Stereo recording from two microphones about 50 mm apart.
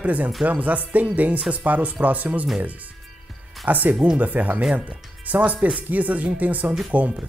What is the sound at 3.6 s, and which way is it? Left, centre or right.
Speech, right.